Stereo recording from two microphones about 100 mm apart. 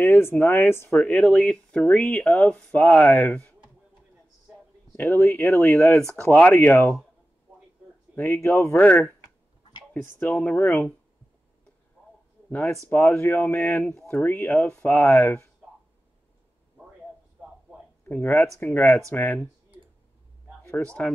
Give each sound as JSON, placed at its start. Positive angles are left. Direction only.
{"t": 0.0, "sound": "speech", "side_deg": 20}
{"t": 4.9, "sound": "speech", "side_deg": 20}
{"t": 8.2, "sound": "speech", "side_deg": 25}
{"t": 10.3, "sound": "speech", "side_deg": 15}
{"t": 12.4, "sound": "speech", "side_deg": 15}
{"t": 18.0, "sound": "speech", "side_deg": 15}
{"t": 20.8, "sound": "speech", "side_deg": 10}